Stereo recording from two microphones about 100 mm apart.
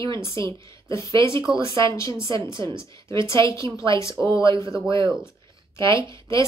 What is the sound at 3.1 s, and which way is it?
A woman's voice, 30° left (ahead or behind).